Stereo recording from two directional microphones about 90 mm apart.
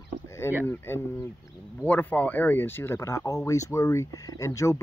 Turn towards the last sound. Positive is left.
turn(degrees=35)  # may be behind; listen again after turning